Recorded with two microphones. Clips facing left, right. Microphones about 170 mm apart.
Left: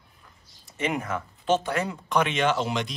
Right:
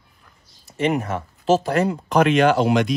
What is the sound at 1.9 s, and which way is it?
Speech, 60° right (ahead or behind).